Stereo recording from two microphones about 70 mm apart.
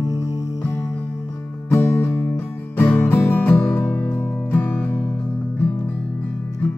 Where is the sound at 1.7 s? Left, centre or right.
Left.